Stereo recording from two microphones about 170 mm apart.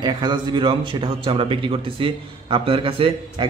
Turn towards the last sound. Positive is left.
turn(degrees=-30)  # may be behind; listen again after turning